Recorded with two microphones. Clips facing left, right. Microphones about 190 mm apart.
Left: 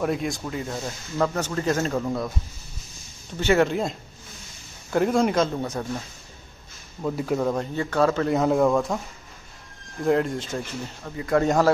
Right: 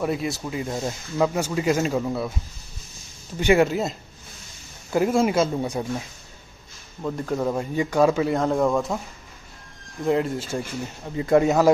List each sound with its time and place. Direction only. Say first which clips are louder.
0.0 s speech: even; centre (ahead or behind)
3.3 s speech: right 2 dB; 10° right (ahead or behind)
4.9 s speech: right 1 dB; 5° right (ahead or behind)
7.0 s speech: left 1 dB; 5° left (ahead or behind)
7.3 s speech: right 3 dB; 5° right (ahead or behind)
8.4 s speech: left 1 dB; 5° left (ahead or behind)
10.0 s speech: even; 5° right (ahead or behind)
11.1 s speech: right 4 dB; 20° right (ahead or behind)
11.4 s speech: left 1 dB; 5° right (ahead or behind)